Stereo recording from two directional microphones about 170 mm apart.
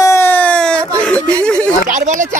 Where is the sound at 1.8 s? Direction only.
50° right (ahead or behind).